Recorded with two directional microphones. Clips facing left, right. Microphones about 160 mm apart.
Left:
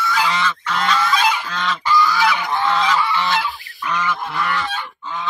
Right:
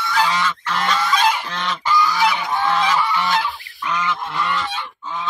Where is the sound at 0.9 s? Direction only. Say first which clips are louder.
Right 1 dB; 20° right (ahead or behind).